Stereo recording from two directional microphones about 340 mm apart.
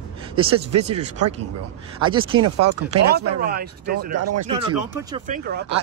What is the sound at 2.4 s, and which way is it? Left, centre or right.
Speech, right.